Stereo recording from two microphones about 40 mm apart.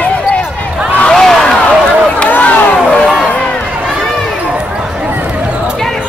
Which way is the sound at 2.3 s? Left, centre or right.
Left.